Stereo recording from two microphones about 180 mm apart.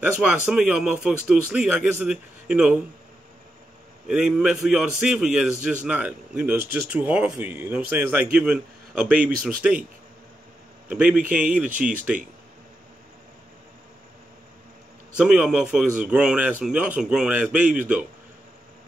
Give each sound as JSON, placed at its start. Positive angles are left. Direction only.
{"t": 0.0, "sound": "speech", "side_deg": -5}
{"t": 4.1, "sound": "speech", "side_deg": -5}
{"t": 10.9, "sound": "speech", "side_deg": -5}
{"t": 11.7, "sound": "speech", "side_deg": -45}
{"t": 15.1, "sound": "speech", "side_deg": -5}